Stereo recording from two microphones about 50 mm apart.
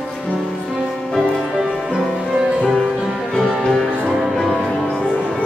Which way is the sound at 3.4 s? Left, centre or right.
Centre.